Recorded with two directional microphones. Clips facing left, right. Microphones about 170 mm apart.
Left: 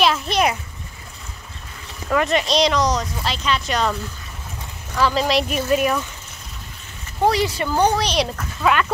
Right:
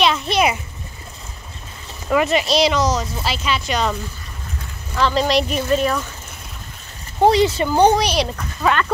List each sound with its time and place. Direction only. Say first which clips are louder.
0.0 s a sound: right 1 dB; centre (ahead or behind)
2.0 s speech: right 2 dB; 5° right (ahead or behind)
4.9 s speech: right 1 dB; 5° left (ahead or behind)
7.2 s speech: right 4 dB; 25° right (ahead or behind)
8.1 s speech: right 1 dB; centre (ahead or behind)